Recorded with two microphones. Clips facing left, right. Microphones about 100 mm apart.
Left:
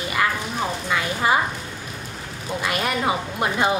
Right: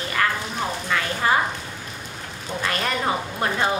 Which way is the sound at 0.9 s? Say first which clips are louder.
Left 1 dB; 15° left (ahead or behind).